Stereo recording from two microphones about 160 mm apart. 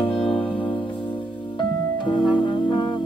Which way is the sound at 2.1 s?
30° left (ahead or behind).